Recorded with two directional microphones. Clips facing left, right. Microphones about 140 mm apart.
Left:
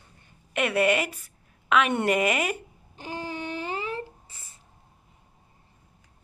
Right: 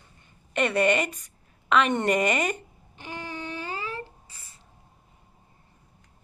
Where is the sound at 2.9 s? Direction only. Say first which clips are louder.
Left 3 dB; 35° left (ahead or behind).